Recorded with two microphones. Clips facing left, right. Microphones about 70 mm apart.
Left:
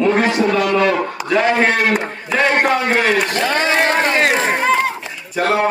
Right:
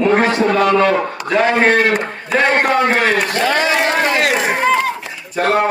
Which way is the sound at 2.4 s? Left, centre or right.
Right.